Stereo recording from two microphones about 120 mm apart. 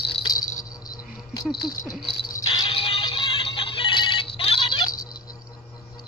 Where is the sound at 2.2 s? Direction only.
40° left (ahead or behind).